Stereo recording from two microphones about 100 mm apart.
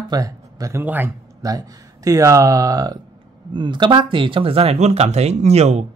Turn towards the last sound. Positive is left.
turn(degrees=-90)